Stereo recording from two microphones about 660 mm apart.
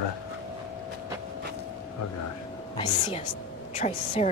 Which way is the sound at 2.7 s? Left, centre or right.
Centre.